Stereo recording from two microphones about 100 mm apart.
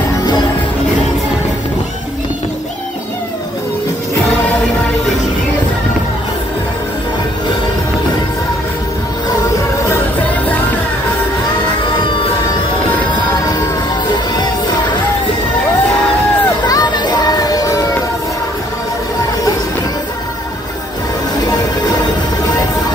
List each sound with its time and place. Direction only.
14.1 s music: 50° left (ahead or behind)
16.6 s music: 40° left (ahead or behind)